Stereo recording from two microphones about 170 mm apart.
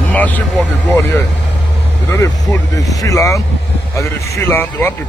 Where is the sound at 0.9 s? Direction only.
10° left (ahead or behind).